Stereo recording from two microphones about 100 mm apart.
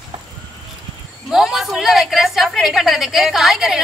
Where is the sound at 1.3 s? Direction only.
Centre (ahead or behind).